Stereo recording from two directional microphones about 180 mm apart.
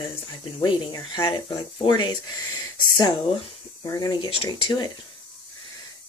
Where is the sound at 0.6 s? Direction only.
25° left (ahead or behind).